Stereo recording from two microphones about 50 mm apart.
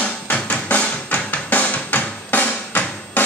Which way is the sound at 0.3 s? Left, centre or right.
Left.